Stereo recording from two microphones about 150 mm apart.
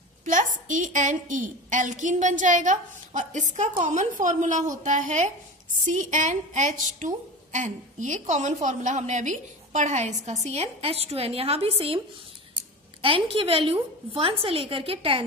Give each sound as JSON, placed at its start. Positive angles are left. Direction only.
{"t": 0.2, "sound": "a woman's voice", "side_deg": -60}
{"t": 13.0, "sound": "a woman's voice", "side_deg": -35}